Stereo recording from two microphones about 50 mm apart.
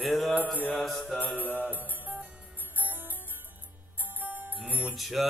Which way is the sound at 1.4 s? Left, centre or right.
Left.